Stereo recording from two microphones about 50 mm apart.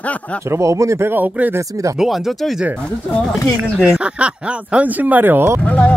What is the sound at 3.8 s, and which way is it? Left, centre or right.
Speech, right.